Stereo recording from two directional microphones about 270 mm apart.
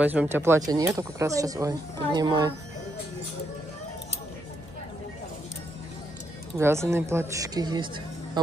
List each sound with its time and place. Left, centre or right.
0.0 s speech: centre
6.6 s speech: centre